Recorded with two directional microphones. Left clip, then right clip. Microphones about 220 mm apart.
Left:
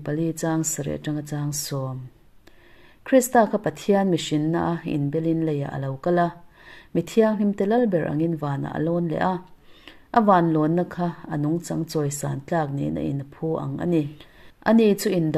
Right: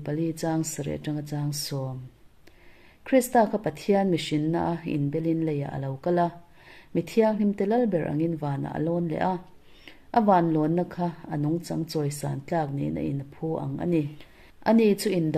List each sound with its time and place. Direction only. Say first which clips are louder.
0.0 s a woman's voice: left 3 dB; 15° left (ahead or behind)
3.0 s a woman's voice: left 3 dB; 15° left (ahead or behind)